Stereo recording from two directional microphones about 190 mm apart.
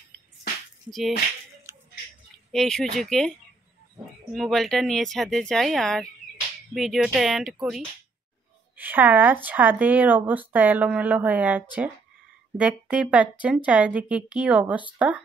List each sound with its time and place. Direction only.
0.8 s speech: centre (ahead or behind)
1.7 s music: 15° right (ahead or behind)
2.5 s speech: centre (ahead or behind)
8.7 s speech: 10° right (ahead or behind)